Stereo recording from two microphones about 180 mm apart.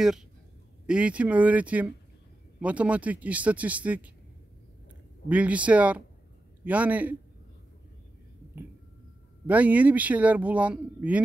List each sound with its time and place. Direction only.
0.8 s speech: 5° right (ahead or behind)
5.3 s speech: 5° right (ahead or behind)
9.5 s speech: 10° right (ahead or behind)